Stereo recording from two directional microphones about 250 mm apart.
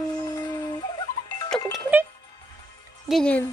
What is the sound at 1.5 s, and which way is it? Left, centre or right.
Music, centre.